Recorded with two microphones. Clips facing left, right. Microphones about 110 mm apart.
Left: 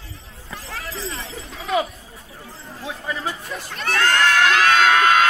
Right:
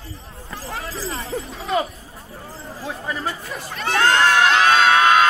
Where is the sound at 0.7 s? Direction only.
30° right (ahead or behind).